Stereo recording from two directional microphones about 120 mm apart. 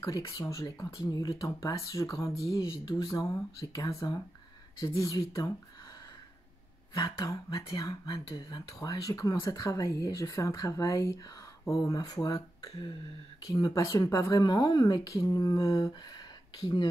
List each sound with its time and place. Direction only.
0.0 s speech: 30° left (ahead or behind)
6.9 s speech: 30° left (ahead or behind)